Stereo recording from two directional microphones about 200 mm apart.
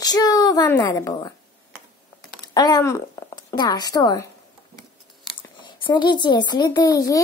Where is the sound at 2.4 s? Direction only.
20° left (ahead or behind).